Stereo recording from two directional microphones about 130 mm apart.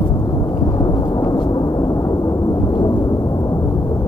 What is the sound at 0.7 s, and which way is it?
Thunder, 35° left (ahead or behind).